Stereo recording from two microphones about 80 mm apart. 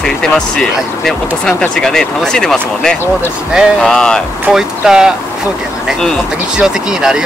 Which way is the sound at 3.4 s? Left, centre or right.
Centre.